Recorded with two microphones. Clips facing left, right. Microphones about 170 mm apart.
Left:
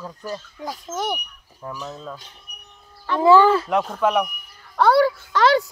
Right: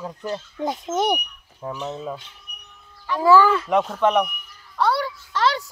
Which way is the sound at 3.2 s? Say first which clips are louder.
Left 2 dB; 25° left (ahead or behind).